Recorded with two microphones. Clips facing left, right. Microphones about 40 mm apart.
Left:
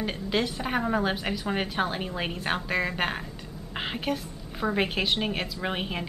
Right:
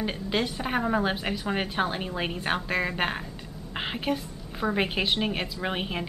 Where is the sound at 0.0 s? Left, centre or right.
Centre.